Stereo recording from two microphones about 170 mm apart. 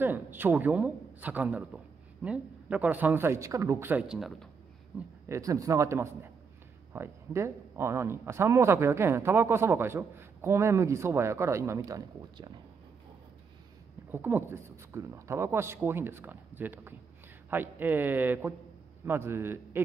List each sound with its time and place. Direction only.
0.0 s a man's voice: 10° right (ahead or behind)
4.9 s speech: 20° right (ahead or behind)
14.1 s speech: 10° right (ahead or behind)